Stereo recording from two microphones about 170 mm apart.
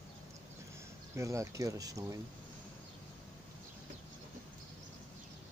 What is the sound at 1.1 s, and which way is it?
Speech, 20° right (ahead or behind).